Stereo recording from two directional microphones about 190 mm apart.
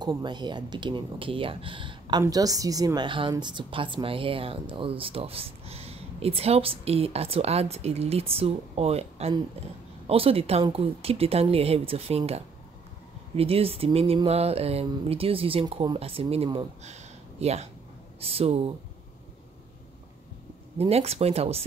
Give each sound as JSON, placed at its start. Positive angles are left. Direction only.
{"t": 0.0, "sound": "speech", "side_deg": -25}
{"t": 20.7, "sound": "speech", "side_deg": -30}